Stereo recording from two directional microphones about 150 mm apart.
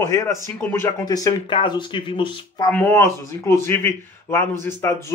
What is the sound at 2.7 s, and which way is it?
A man's voice, 10° left (ahead or behind).